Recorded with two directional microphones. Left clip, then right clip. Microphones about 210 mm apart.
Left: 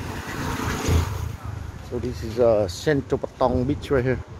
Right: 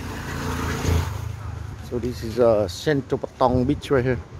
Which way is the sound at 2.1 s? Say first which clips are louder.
Right 1 dB; 25° right (ahead or behind).